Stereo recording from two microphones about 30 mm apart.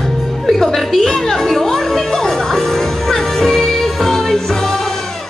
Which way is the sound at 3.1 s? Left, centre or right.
Centre.